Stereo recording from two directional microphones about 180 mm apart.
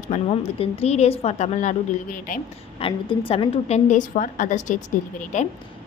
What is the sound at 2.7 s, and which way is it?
A woman's voice, 30° left (ahead or behind).